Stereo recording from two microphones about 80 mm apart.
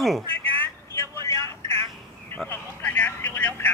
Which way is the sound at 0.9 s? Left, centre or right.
Left.